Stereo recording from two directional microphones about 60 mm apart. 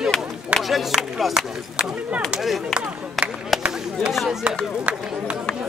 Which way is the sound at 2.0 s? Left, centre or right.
Right.